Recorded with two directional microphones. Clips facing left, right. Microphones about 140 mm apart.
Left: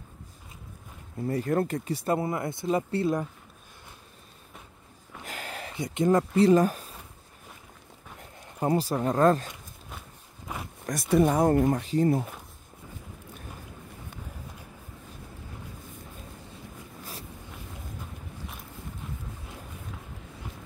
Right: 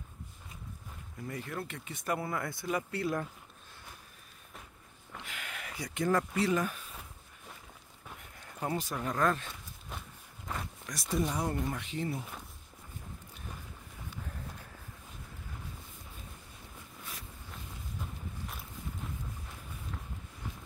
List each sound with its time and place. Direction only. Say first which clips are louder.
1.2 s speech: left 13 dB; 40° left (ahead or behind)
5.2 s a sound: left 8 dB; 40° left (ahead or behind); by 6.4 s 25° left (ahead or behind)
6.4 s speech: left 10 dB; 35° left (ahead or behind)
8.2 s speech: left 8 dB; 35° left (ahead or behind)
10.9 s speech: left 11 dB; 60° left (ahead or behind); by 12.2 s 40° left (ahead or behind)